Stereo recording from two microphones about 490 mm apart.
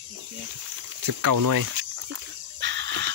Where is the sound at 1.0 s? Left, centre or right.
Right.